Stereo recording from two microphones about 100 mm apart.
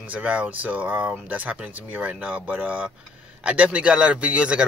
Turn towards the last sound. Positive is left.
turn(degrees=-10)  # may be behind; listen again after turning